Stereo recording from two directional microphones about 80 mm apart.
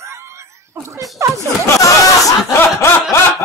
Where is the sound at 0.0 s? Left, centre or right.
Right.